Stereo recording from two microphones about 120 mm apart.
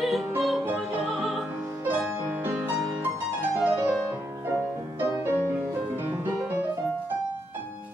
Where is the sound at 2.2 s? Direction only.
15° right (ahead or behind).